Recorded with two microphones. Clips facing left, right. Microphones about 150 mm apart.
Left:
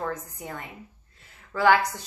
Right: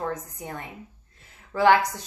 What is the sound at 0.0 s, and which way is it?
Speech, 25° right (ahead or behind).